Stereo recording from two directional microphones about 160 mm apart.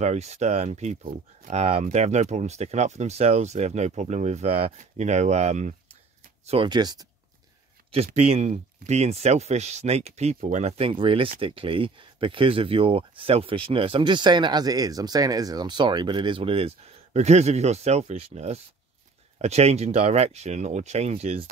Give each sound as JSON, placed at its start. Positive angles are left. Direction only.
{"t": 0.0, "sound": "speech", "side_deg": -45}
{"t": 6.7, "sound": "speech", "side_deg": -25}
{"t": 7.9, "sound": "speech", "side_deg": -40}